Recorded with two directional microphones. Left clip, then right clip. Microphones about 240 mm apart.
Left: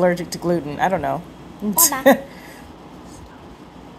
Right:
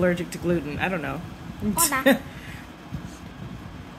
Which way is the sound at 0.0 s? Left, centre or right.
Centre.